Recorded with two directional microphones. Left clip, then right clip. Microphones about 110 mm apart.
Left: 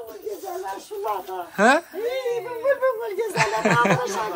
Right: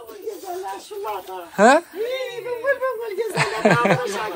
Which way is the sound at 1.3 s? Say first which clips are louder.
Right 4 dB; 25° left (ahead or behind).